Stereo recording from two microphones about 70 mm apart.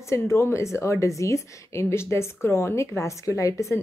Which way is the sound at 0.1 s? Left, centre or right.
Left.